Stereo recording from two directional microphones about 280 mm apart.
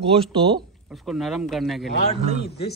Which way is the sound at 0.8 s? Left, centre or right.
Centre.